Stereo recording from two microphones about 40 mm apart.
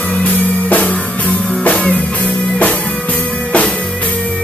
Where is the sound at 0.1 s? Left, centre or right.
Left.